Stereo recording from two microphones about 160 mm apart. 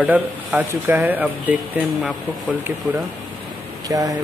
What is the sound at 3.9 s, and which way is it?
Speech, 20° right (ahead or behind).